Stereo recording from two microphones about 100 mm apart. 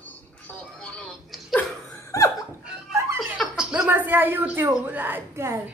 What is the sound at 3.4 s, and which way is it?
Chuckle, 10° right (ahead or behind).